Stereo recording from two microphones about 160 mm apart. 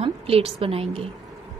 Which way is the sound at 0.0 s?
35° right (ahead or behind).